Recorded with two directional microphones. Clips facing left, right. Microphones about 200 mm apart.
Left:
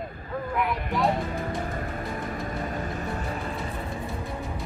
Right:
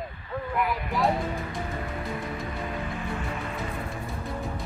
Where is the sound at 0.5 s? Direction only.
Centre (ahead or behind).